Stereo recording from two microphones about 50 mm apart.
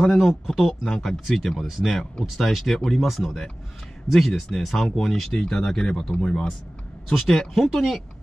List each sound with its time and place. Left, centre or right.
0.0 s speech: centre
0.8 s speech: centre
1.2 s speech: centre
5.4 s speech: centre